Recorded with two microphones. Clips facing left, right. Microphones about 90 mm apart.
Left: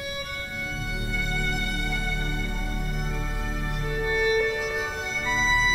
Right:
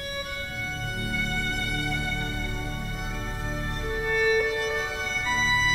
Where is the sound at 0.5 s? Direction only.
Centre (ahead or behind).